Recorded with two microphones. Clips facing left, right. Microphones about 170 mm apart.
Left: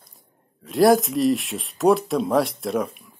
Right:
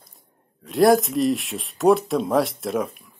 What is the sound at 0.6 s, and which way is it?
Speech, centre (ahead or behind).